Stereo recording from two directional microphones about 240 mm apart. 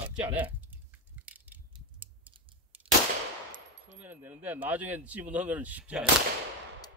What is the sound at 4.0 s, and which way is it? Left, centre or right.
Speech, centre.